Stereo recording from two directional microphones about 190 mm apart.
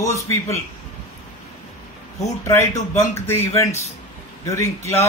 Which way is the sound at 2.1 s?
15° left (ahead or behind).